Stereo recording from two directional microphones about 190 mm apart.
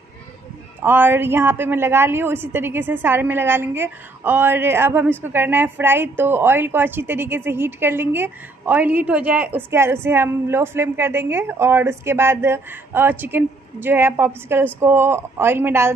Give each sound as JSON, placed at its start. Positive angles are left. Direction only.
{"t": 0.8, "sound": "a woman's voice", "side_deg": -10}